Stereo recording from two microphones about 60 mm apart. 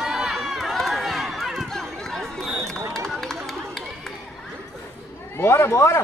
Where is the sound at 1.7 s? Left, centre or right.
Centre.